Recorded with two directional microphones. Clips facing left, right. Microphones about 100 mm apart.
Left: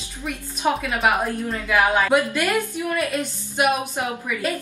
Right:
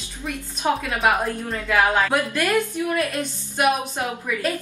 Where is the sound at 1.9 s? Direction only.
10° left (ahead or behind).